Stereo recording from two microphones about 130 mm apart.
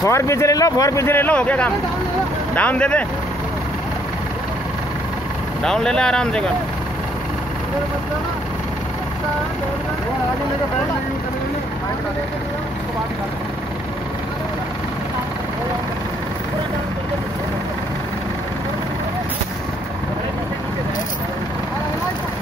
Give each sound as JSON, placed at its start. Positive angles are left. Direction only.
{"t": 0.0, "sound": "a man's voice", "side_deg": 25}
{"t": 5.6, "sound": "speech", "side_deg": 5}